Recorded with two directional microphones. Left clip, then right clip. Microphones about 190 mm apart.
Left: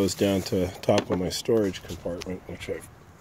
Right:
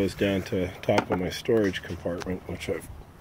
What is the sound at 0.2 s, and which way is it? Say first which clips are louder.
Speech: left 2 dB; 35° left (ahead or behind).